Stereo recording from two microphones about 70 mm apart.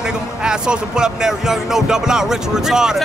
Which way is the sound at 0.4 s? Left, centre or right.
Centre.